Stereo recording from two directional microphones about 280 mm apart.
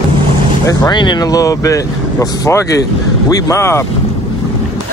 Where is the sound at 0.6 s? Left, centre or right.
Centre.